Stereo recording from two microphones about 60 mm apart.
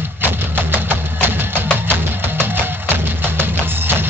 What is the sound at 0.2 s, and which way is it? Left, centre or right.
Music, right.